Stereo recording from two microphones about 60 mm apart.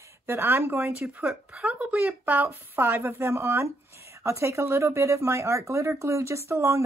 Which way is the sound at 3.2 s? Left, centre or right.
Right.